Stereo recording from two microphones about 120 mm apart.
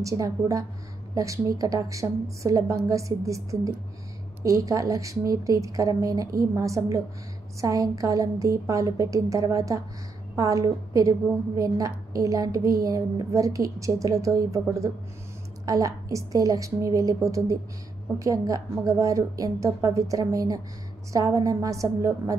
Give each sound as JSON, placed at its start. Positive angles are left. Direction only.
{"t": 0.0, "sound": "a woman's voice", "side_deg": -30}